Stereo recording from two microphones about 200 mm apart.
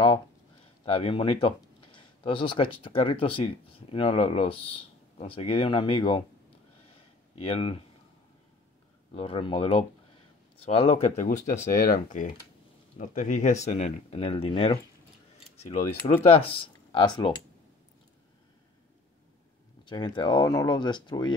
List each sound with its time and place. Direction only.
0.8 s speech: 30° left (ahead or behind)
7.3 s speech: 30° left (ahead or behind)
9.1 s speech: 25° left (ahead or behind)
11.2 s speech: 45° left (ahead or behind); by 17.4 s 20° left (ahead or behind)
19.8 s a sound: 25° left (ahead or behind)
20.2 s speech: 20° left (ahead or behind)